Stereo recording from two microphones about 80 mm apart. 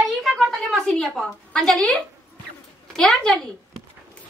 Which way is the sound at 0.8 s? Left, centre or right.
Centre.